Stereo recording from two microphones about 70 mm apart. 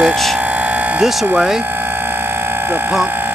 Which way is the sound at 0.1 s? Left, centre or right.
Centre.